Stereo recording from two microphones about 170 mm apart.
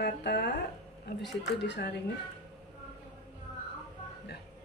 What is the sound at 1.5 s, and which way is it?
Speech, 90° left.